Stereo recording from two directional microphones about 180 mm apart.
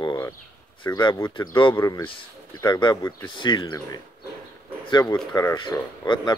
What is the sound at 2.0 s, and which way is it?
Speech, 25° left (ahead or behind).